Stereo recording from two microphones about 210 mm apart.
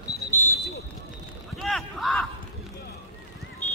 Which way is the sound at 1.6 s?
Centre (ahead or behind).